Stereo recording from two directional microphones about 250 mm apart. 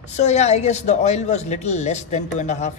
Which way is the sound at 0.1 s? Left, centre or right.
Left.